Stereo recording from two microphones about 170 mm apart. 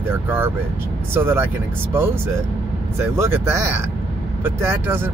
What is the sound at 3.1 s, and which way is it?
Speech, 15° right (ahead or behind).